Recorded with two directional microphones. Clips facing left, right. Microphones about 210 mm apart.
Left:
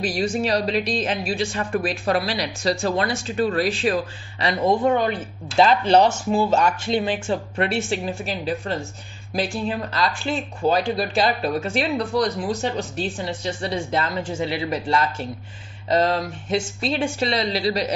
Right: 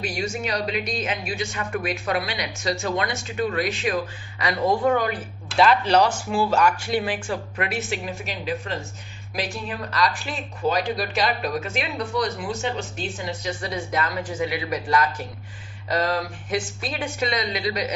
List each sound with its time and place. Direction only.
0.0 s a woman's voice: 35° left (ahead or behind)